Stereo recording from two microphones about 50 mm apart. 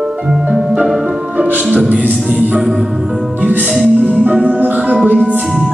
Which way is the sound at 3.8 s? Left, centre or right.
Right.